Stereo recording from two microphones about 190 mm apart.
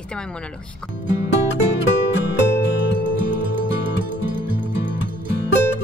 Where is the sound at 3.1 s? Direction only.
50° right (ahead or behind).